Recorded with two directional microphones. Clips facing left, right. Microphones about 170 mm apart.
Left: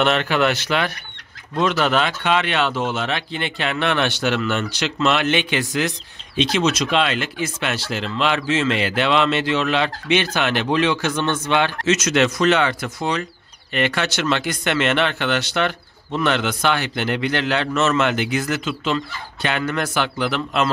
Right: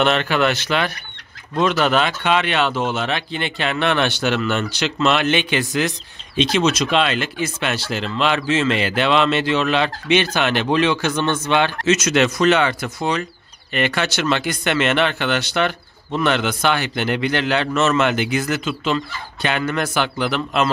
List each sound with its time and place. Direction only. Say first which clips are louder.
0.0 s speech: right 1 dB; 5° left (ahead or behind)
1.6 s speech: right 1 dB; 15° right (ahead or behind)
11.8 s speech: right 1 dB; 10° right (ahead or behind)